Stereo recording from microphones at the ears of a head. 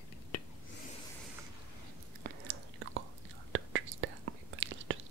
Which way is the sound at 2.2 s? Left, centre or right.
Right.